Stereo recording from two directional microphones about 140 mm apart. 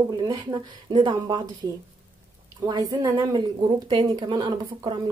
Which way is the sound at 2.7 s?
30° right (ahead or behind).